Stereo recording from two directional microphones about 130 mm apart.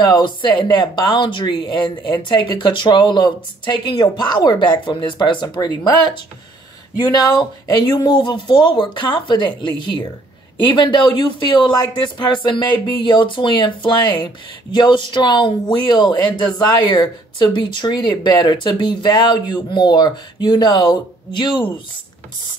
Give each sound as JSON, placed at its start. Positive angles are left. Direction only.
{"t": 0.0, "sound": "speech", "side_deg": 35}